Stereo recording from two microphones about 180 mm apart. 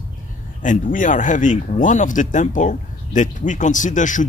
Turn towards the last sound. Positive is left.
turn(degrees=45)  # may be behind; listen again after turning